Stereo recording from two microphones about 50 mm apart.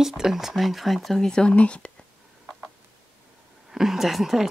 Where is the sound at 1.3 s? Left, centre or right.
Centre.